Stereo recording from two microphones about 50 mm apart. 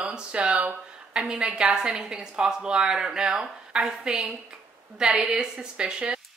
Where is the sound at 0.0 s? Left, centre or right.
Right.